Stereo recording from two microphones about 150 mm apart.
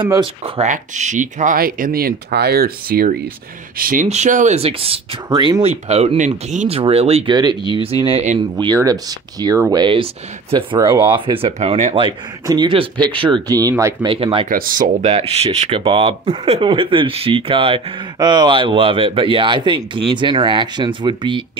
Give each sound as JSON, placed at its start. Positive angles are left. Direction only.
{"t": 0.0, "sound": "speech", "side_deg": -30}
{"t": 0.6, "sound": "speech", "side_deg": -50}
{"t": 3.7, "sound": "speech", "side_deg": -65}
{"t": 4.6, "sound": "speech", "side_deg": -40}
{"t": 5.3, "sound": "speech", "side_deg": -25}
{"t": 5.6, "sound": "speech", "side_deg": -45}
{"t": 6.8, "sound": "speech", "side_deg": -40}
{"t": 7.3, "sound": "speech", "side_deg": -30}
{"t": 8.1, "sound": "speech", "side_deg": -50}
{"t": 8.7, "sound": "speech", "side_deg": -25}
{"t": 14.0, "sound": "speech", "side_deg": -35}
{"t": 14.5, "sound": "speech", "side_deg": -65}
{"t": 15.0, "sound": "speech", "side_deg": -45}
{"t": 15.8, "sound": "speech", "side_deg": -35}